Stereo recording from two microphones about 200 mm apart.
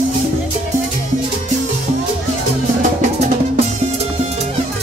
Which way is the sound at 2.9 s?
40° right (ahead or behind).